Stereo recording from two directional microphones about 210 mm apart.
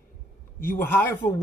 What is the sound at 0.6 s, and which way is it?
Speech, 45° left (ahead or behind).